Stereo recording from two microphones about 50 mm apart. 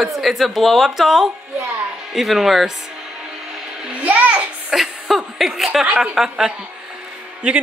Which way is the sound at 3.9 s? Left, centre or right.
Right.